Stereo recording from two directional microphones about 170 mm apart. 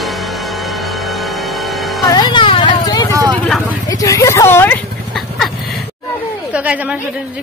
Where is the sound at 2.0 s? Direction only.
25° left (ahead or behind).